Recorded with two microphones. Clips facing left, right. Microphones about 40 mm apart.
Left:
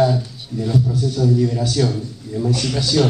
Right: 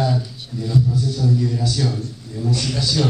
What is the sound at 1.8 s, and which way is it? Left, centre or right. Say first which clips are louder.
Speech: left 5 dB; centre.